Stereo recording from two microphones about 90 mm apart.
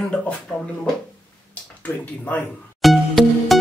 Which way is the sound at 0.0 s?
10° left (ahead or behind).